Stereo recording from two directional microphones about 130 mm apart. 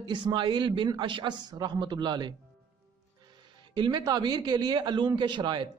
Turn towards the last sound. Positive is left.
turn(degrees=-35)  # may be behind; listen again after turning